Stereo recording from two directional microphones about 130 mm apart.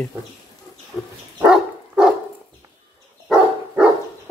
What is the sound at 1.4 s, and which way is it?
Dog, 5° right (ahead or behind).